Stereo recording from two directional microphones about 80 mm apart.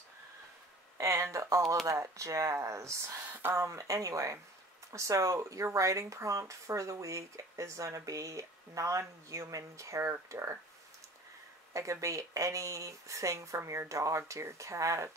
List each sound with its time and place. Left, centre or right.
0.9 s speech: right
11.7 s speech: right